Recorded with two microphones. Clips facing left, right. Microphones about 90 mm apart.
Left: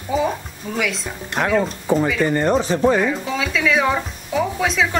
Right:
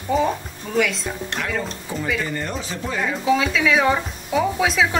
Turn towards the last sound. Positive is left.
turn(degrees=0)  # may be behind; listen again after turning